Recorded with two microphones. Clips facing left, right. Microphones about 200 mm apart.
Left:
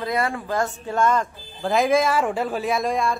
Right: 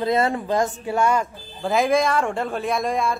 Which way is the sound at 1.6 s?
Centre (ahead or behind).